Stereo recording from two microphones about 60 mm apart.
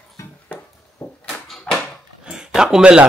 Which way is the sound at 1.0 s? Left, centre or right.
Left.